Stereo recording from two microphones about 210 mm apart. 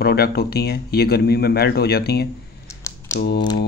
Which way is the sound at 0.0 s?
50° left (ahead or behind).